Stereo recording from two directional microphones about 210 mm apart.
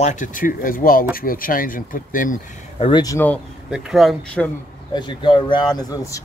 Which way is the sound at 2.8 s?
20° left (ahead or behind).